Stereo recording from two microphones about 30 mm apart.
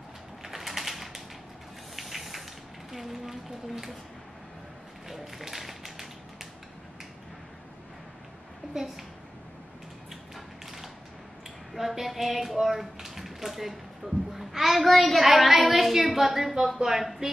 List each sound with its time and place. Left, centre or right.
0.4 s a sound: centre
2.0 s spray: centre
2.9 s speech: centre
5.0 s tap: centre
8.7 s speech: centre
10.3 s mechanisms: centre
11.7 s a woman's voice: centre